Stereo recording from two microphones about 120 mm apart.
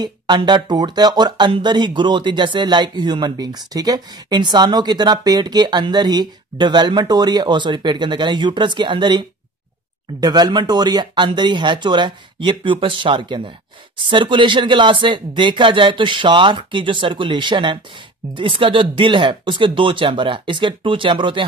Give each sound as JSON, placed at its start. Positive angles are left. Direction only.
{"t": 0.0, "sound": "speech", "side_deg": -40}
{"t": 10.2, "sound": "speech", "side_deg": -35}